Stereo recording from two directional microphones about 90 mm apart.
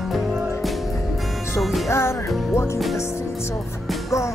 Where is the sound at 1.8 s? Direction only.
30° left (ahead or behind).